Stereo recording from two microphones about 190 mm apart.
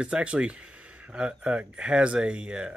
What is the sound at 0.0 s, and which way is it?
Speech, 5° right (ahead or behind).